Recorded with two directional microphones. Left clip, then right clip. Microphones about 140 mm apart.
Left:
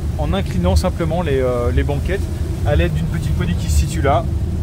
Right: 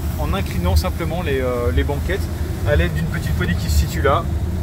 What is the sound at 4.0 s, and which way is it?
Speech, 40° left (ahead or behind).